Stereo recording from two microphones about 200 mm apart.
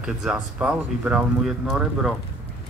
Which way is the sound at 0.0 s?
5° right (ahead or behind).